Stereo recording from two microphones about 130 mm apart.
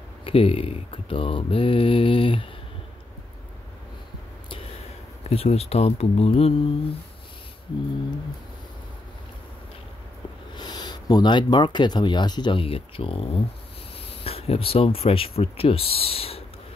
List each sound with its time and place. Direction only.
0.2 s speech: 45° left (ahead or behind)
5.3 s speech: 50° left (ahead or behind)
10.5 s speech: 35° left (ahead or behind)